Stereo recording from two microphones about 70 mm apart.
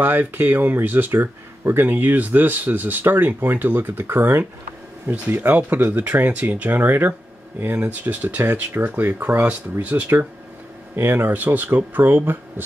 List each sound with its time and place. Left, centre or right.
0.0 s speech: right
11.0 s speech: right